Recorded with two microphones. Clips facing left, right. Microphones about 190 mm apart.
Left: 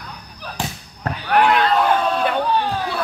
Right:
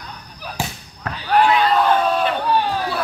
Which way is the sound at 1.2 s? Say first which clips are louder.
Even; 60° left (ahead or behind).